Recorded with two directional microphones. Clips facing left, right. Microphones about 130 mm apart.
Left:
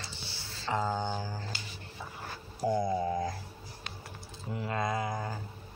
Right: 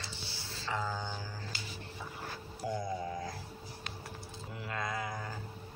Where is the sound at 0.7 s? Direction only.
25° left (ahead or behind).